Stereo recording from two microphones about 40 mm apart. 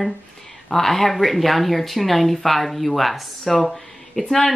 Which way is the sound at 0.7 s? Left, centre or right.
Centre.